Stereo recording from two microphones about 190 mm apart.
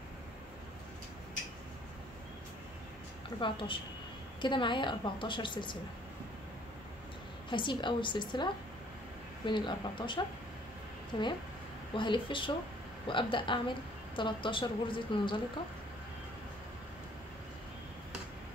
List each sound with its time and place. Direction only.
3.3 s a woman's voice: 25° left (ahead or behind)
7.5 s a woman's voice: 25° left (ahead or behind)
9.5 s a woman's voice: 25° left (ahead or behind)